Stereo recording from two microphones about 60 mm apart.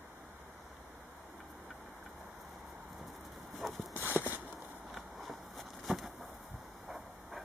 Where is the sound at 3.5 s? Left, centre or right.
Centre.